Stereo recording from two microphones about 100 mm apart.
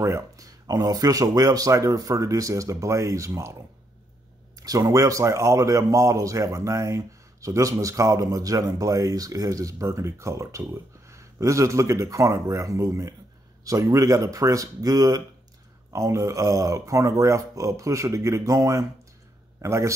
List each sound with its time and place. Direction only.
0.0 s speech: 35° right (ahead or behind)
4.6 s a man's voice: 35° right (ahead or behind)